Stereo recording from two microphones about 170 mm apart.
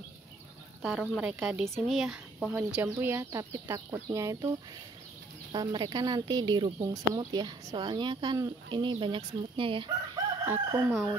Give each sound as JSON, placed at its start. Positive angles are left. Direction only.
{"t": 0.8, "sound": "speech", "side_deg": -5}
{"t": 2.7, "sound": "speech", "side_deg": -15}
{"t": 5.5, "sound": "speech", "side_deg": -25}
{"t": 10.4, "sound": "speech", "side_deg": -15}